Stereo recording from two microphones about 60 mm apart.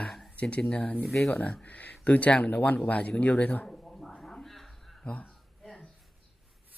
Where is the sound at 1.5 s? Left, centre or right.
Left.